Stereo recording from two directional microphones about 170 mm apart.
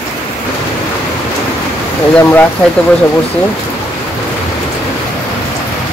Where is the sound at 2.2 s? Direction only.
10° left (ahead or behind).